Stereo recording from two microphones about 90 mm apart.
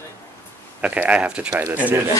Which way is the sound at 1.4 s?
25° right (ahead or behind).